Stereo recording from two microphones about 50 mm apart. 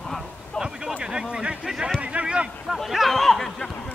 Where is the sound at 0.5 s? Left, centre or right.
Centre.